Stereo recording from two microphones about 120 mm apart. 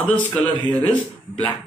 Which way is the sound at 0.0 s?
10° left (ahead or behind).